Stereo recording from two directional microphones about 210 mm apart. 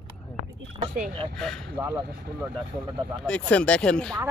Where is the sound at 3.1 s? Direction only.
5° left (ahead or behind).